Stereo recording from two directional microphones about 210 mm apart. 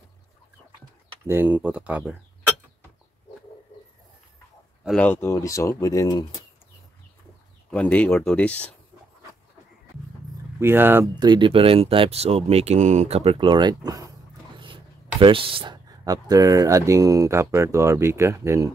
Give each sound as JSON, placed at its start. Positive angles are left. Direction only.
{"t": 1.2, "sound": "speech", "side_deg": -10}
{"t": 4.8, "sound": "speech", "side_deg": 5}
{"t": 7.7, "sound": "speech", "side_deg": 5}
{"t": 10.6, "sound": "speech", "side_deg": -10}
{"t": 11.1, "sound": "speech", "side_deg": -20}